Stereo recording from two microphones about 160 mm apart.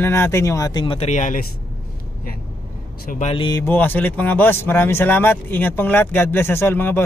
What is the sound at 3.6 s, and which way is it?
Speech, 10° left (ahead or behind).